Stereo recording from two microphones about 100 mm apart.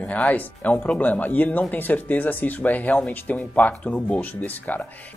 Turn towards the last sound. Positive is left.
turn(degrees=15)  # may be behind; listen again after turning